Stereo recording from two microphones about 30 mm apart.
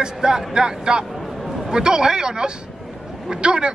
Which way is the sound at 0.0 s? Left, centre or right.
Right.